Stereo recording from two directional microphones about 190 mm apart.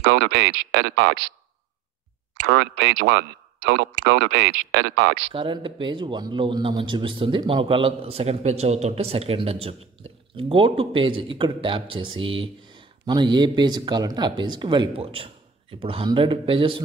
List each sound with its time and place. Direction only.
0.0 s speech: 75° right (ahead or behind); by 1.1 s 90° right
2.4 s speech: 75° right (ahead or behind); by 5.1 s 90° right
5.3 s speech: 25° right (ahead or behind)